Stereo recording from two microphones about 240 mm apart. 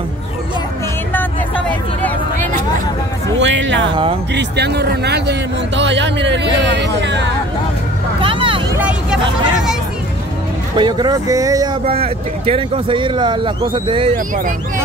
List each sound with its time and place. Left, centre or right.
3.3 s a man's voice: right
3.9 s speech: right
4.3 s a man's voice: right
8.2 s vehicle: right
8.7 s vehicle: centre
10.8 s speech: centre
14.1 s speech: right